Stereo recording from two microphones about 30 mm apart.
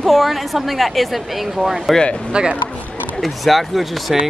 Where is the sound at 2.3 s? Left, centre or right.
Right.